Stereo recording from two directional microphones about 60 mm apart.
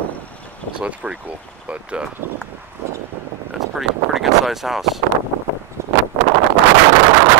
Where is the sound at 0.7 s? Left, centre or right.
Right.